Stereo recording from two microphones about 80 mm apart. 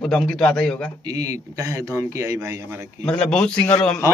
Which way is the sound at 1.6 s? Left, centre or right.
Right.